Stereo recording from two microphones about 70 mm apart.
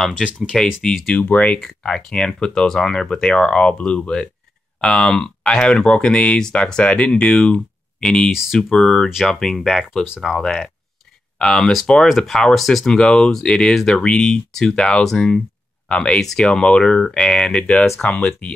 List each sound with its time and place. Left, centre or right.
0.5 s speech: centre
1.1 s speech: centre
1.6 s speech: centre
8.3 s speech: centre
8.5 s speech: centre; by 18.2 s left